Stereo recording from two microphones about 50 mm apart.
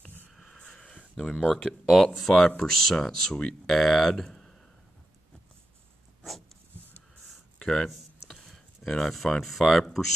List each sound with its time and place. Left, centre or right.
0.4 s a sound: centre
0.7 s a sound: left
1.2 s speech: centre
2.4 s speech: centre
6.2 s dog: centre
7.5 s speech: centre